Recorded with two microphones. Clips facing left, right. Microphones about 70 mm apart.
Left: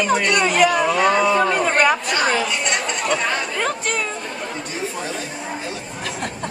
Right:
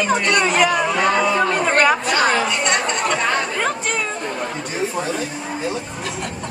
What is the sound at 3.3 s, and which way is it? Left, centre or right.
Speech, centre.